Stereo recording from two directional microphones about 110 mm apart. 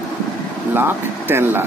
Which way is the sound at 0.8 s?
20° right (ahead or behind).